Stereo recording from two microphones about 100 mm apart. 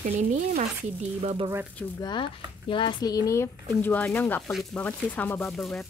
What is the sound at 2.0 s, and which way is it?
Speech, 50° left (ahead or behind).